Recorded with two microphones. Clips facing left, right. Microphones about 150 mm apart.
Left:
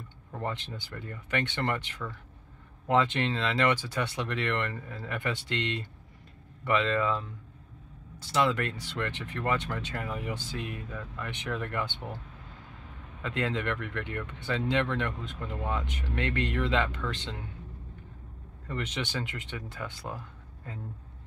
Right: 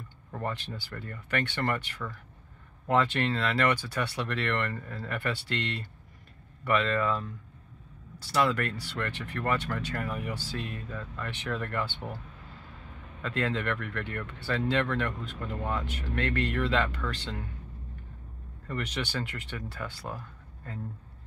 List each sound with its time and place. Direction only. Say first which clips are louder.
0.4 s speech: even; 20° left (ahead or behind)
13.2 s speech: right 1 dB; 15° left (ahead or behind)
18.7 s speech: even; 20° left (ahead or behind)